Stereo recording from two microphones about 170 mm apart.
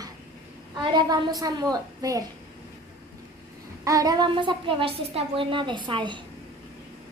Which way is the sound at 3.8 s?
20° right (ahead or behind).